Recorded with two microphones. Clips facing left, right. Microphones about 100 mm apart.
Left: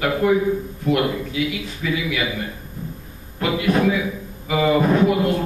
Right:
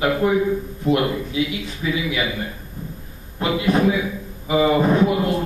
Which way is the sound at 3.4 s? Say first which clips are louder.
Even; 25° right (ahead or behind).